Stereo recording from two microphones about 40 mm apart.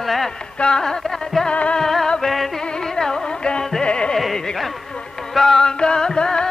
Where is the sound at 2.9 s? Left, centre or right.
Centre.